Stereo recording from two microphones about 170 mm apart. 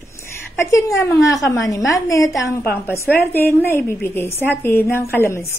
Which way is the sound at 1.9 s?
20° left (ahead or behind).